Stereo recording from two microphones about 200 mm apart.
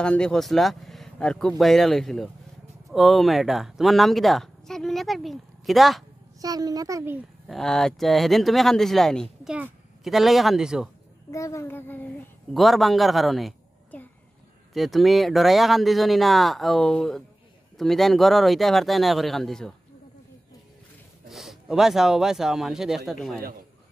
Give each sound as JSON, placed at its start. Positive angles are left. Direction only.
{"t": 0.0, "sound": "speech", "side_deg": 5}
{"t": 6.4, "sound": "a child's voice", "side_deg": -20}
{"t": 7.4, "sound": "speech", "side_deg": 0}
{"t": 11.2, "sound": "a woman's voice", "side_deg": 15}
{"t": 21.3, "sound": "speech", "side_deg": 0}